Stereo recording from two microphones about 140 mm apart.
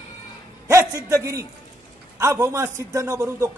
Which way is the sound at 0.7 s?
20° right (ahead or behind).